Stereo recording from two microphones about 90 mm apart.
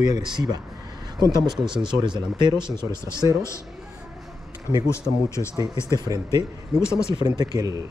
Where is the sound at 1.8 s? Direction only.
60° right (ahead or behind).